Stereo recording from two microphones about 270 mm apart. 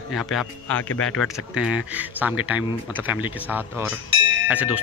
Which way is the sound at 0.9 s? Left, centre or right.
Left.